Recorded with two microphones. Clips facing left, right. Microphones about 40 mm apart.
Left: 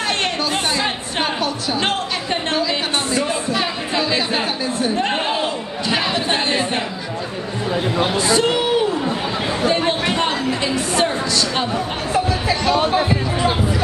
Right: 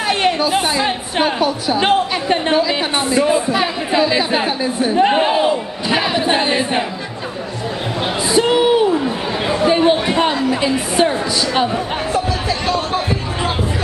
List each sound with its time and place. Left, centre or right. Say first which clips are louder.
0.1 s a woman's voice: right 9 dB; centre
8.0 s a sound: right 2 dB; centre
11.5 s speech: right 4 dB; centre
12.1 s speech: left 2 dB; centre